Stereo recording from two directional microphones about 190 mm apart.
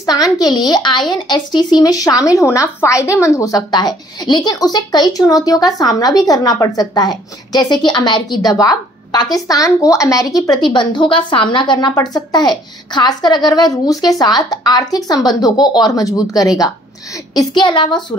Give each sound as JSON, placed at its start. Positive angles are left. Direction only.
{"t": 0.0, "sound": "a child's voice", "side_deg": 20}